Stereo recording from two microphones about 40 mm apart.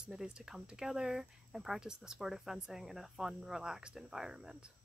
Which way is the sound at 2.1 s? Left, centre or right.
Centre.